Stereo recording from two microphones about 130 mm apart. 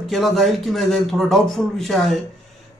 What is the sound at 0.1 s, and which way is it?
Speech, centre (ahead or behind).